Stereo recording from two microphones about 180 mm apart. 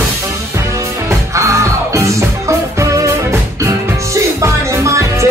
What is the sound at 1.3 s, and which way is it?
Music, 15° right (ahead or behind).